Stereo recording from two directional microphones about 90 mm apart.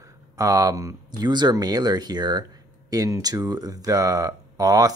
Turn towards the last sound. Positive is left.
turn(degrees=-45)  # may be behind; listen again after turning